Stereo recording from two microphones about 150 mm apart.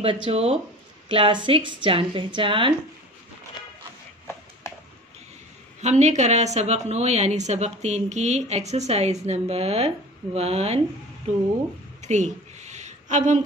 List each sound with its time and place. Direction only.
0.0 s a woman's voice: 40° right (ahead or behind)
5.8 s a woman's voice: 50° right (ahead or behind)
12.0 s a sound: 50° right (ahead or behind)